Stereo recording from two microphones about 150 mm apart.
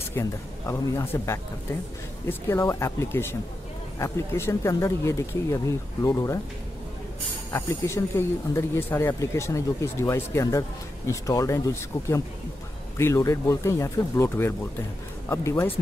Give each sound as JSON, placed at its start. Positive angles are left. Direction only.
{"t": 0.2, "sound": "speech", "side_deg": 15}
{"t": 7.5, "sound": "speech", "side_deg": 15}